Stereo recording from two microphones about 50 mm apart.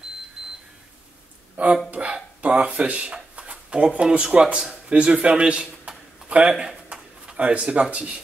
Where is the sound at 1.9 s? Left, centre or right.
Right.